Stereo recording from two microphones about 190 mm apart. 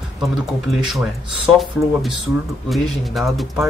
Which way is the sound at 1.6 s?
Centre (ahead or behind).